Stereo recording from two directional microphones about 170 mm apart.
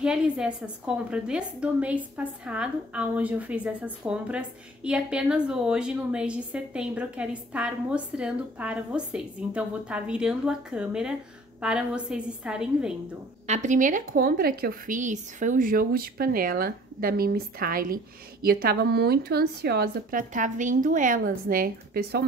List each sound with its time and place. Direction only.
0.0 s a woman's voice: 5° right (ahead or behind)
13.5 s a woman's voice: 45° right (ahead or behind)